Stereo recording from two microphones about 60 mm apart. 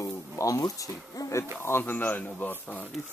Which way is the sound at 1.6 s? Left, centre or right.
Left.